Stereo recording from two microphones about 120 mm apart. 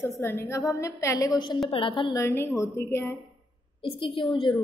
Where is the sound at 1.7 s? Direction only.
45° left (ahead or behind).